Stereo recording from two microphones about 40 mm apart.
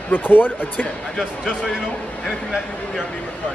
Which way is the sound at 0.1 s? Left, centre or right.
Left.